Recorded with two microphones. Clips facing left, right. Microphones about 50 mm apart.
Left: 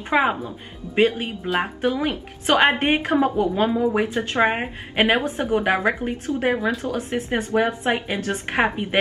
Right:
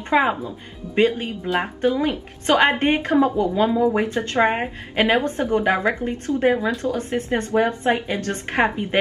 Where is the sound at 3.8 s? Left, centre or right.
Centre.